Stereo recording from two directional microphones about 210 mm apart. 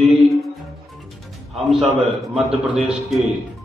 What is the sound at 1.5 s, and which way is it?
A man's voice, centre (ahead or behind).